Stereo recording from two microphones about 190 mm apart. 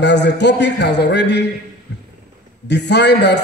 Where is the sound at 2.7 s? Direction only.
65° left (ahead or behind).